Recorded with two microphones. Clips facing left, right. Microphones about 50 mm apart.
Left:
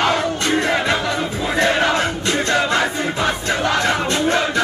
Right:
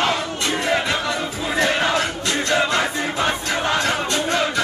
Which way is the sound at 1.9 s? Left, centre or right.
Left.